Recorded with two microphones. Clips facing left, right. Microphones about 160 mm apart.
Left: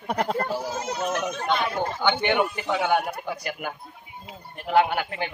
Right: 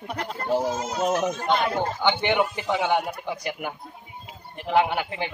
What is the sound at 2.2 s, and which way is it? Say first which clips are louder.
A man's voice: even; 20° right (ahead or behind).